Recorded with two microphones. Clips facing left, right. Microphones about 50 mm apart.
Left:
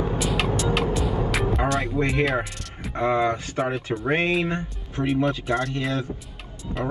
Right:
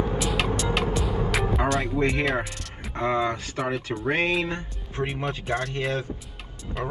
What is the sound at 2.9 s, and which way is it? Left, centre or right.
Speech, centre.